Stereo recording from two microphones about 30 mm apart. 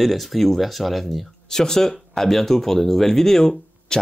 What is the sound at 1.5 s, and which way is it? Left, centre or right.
Speech, centre.